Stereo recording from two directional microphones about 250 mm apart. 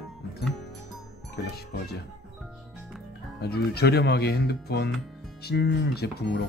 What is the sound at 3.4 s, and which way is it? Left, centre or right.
Speech, left.